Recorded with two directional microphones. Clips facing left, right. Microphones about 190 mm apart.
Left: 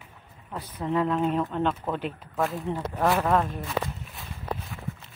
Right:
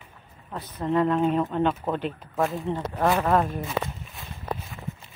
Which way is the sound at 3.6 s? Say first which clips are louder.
Right 1 dB; centre (ahead or behind).